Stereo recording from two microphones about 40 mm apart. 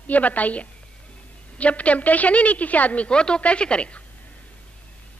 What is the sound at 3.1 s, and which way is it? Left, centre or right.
Speech, left.